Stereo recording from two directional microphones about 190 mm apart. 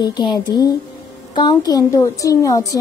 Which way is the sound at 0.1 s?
25° left (ahead or behind).